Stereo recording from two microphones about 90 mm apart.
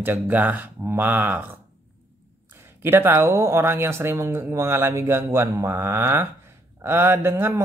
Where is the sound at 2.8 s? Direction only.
25° right (ahead or behind).